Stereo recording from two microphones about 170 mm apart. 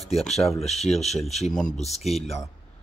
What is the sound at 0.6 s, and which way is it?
Speech, 40° left (ahead or behind).